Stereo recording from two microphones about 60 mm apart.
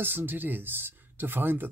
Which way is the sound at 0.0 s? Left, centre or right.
Right.